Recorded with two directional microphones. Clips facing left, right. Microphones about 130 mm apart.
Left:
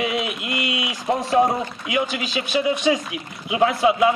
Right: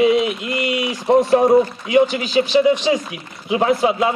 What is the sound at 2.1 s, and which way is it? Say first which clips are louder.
A man's voice: right 8 dB; 30° right (ahead or behind).